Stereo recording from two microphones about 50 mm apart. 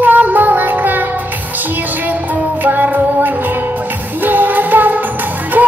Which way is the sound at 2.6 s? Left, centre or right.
Right.